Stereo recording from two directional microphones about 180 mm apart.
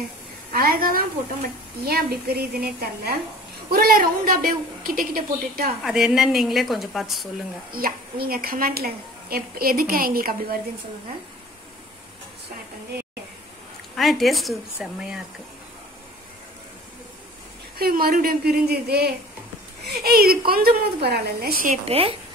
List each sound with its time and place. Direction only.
0.5 s a woman's voice: 55° right (ahead or behind)
5.9 s a woman's voice: 5° right (ahead or behind)
7.7 s a woman's voice: 55° right (ahead or behind)
13.9 s a woman's voice: centre (ahead or behind)
17.7 s a woman's voice: 55° right (ahead or behind)
21.8 s a woman's voice: 30° right (ahead or behind)